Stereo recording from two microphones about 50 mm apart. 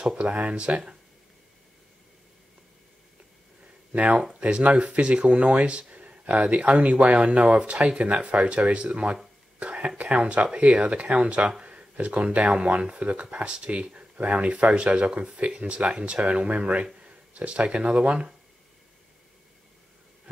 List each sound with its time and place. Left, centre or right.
0.0 s speech: centre
3.9 s speech: right